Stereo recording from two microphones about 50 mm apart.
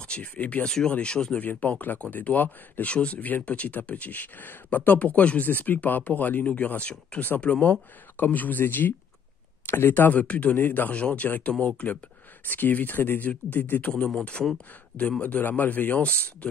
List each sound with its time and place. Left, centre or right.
0.0 s speech: left
0.7 s speech: centre
1.4 s speech: left
2.9 s speech: left
8.2 s speech: left
10.2 s speech: left
10.9 s speech: left
11.2 s speech: left